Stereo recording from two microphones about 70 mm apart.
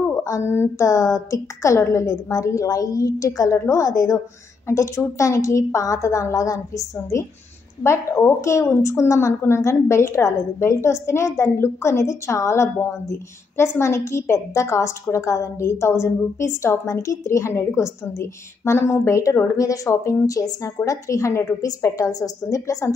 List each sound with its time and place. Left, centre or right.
0.0 s a woman's voice: left
7.8 s a woman's voice: left